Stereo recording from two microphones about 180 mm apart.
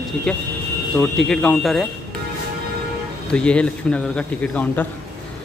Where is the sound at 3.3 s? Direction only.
5° left (ahead or behind).